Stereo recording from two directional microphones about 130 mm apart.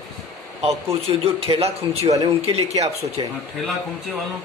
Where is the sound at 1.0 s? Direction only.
50° right (ahead or behind).